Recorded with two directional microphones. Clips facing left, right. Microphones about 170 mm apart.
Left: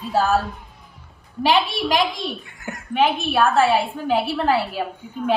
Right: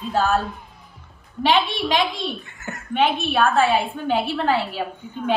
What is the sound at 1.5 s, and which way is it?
A child's voice, 5° left (ahead or behind).